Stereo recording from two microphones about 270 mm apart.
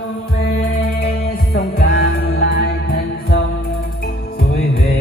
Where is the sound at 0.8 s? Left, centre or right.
Left.